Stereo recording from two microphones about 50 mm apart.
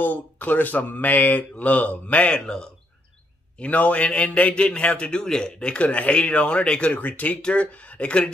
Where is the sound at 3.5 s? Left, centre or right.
Left.